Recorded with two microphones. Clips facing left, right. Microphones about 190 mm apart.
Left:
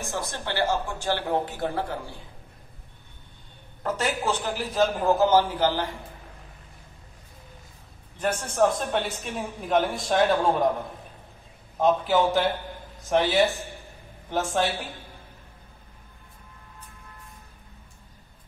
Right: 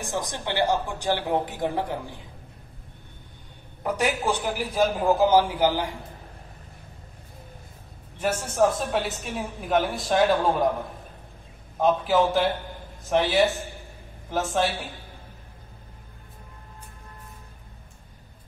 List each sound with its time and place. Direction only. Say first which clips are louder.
0.0 s speech: right 2 dB; 15° right (ahead or behind)
3.8 s speech: right 2 dB; 15° right (ahead or behind)
8.2 s a man's voice: right 1 dB; 5° right (ahead or behind)
11.8 s a man's voice: even; centre (ahead or behind)